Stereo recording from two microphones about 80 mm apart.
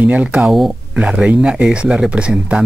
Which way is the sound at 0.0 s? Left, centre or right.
Centre.